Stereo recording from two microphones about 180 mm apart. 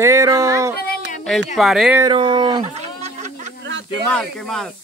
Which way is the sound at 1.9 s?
25° right (ahead or behind).